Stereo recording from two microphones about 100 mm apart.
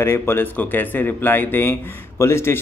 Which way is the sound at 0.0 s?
25° left (ahead or behind).